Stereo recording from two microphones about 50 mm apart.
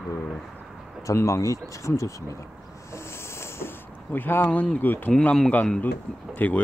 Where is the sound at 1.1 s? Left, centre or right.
Left.